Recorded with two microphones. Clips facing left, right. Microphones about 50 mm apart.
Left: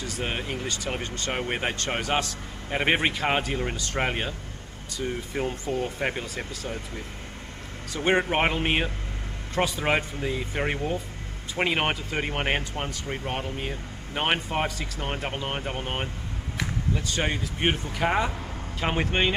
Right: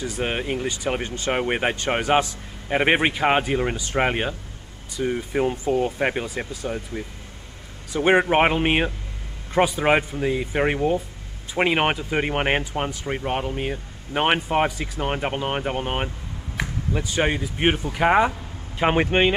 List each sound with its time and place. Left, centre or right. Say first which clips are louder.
0.0 s speech: right 5 dB; centre
7.9 s speech: right 6 dB; centre